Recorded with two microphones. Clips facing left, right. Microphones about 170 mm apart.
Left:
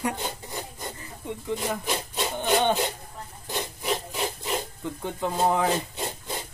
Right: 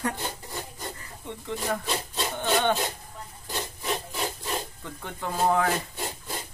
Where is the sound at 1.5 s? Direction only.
15° left (ahead or behind).